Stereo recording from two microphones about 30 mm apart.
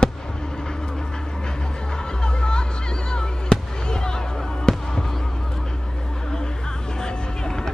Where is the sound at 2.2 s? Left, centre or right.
Left.